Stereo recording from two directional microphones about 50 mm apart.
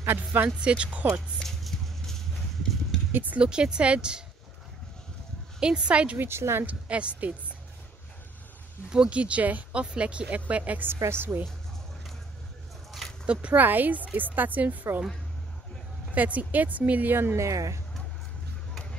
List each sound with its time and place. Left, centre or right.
0.0 s speech: right
0.6 s a woman's voice: right
1.4 s clip-clop: centre
3.1 s speech: right
3.3 s a woman's voice: centre
5.6 s a woman's voice: centre
6.1 s a woman's voice: right
6.6 s a woman's voice: right
8.9 s a woman's voice: right
9.7 s a woman's voice: right
11.3 s speech: right
13.3 s a woman's voice: right
16.2 s a woman's voice: right
17.4 s speech: right